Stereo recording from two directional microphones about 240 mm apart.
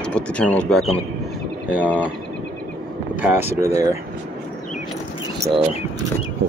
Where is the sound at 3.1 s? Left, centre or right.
Centre.